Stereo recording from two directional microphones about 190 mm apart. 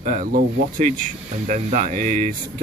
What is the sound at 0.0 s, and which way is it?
Speech, 45° right (ahead or behind).